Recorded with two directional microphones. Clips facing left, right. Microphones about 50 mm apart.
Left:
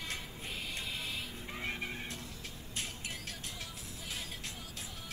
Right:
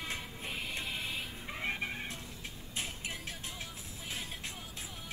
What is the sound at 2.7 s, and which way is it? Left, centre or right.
Music, centre.